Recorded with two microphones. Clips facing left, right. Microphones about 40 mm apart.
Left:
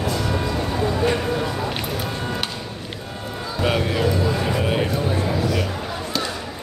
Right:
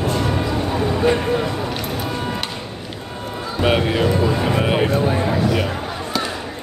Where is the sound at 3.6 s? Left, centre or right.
Right.